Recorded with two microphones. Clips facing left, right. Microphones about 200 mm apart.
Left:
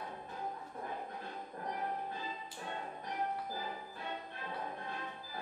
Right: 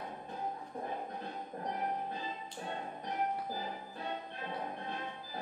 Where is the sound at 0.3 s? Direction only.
20° right (ahead or behind).